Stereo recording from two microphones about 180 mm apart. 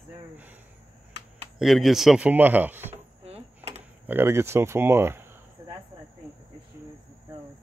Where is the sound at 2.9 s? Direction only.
35° right (ahead or behind).